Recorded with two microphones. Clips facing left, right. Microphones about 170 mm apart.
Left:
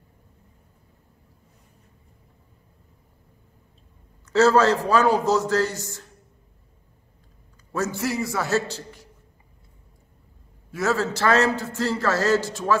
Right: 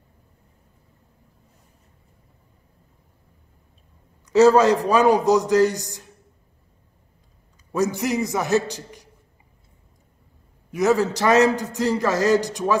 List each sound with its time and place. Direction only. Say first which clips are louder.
4.3 s a man's voice: right 3 dB; 15° right (ahead or behind)
7.7 s a man's voice: right 4 dB; 15° right (ahead or behind)
10.7 s a man's voice: right 5 dB; 15° right (ahead or behind)